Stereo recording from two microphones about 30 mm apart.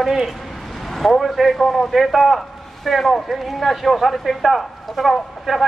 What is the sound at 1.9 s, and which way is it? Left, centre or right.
A man's voice, centre.